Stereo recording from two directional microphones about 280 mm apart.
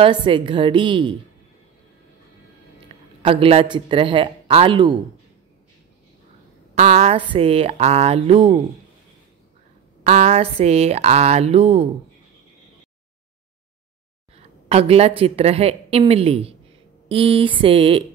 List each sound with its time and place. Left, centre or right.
0.0 s a woman's voice: centre
3.2 s a woman's voice: centre
6.7 s a woman's voice: right
10.0 s a woman's voice: right
14.3 s a woman's voice: right